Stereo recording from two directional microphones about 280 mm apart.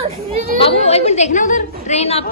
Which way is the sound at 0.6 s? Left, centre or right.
Left.